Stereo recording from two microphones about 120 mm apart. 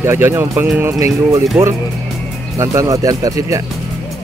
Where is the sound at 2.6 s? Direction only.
25° right (ahead or behind).